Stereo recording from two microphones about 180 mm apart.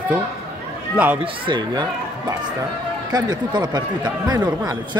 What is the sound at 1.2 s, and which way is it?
Speech, 25° right (ahead or behind).